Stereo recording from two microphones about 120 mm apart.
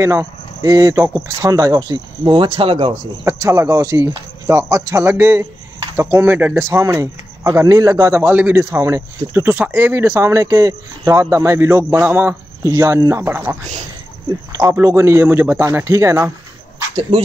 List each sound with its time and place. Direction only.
0.0 s speech: 25° right (ahead or behind); by 2.9 s 50° right (ahead or behind)
3.3 s speech: 25° right (ahead or behind)